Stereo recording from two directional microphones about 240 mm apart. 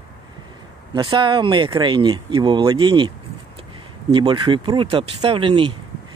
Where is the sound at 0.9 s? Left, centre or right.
Centre.